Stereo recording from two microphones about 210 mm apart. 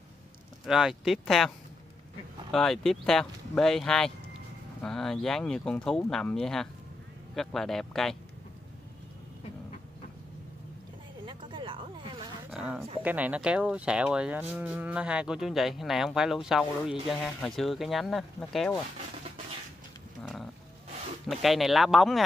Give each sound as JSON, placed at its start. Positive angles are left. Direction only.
{"t": 0.7, "sound": "speech", "side_deg": 0}
{"t": 2.5, "sound": "speech", "side_deg": 0}
{"t": 11.2, "sound": "a sound", "side_deg": -25}
{"t": 12.4, "sound": "a sound", "side_deg": -5}
{"t": 13.0, "sound": "speech", "side_deg": -5}
{"t": 21.3, "sound": "speech", "side_deg": 0}